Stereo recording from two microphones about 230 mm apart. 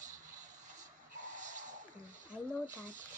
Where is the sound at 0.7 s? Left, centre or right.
Right.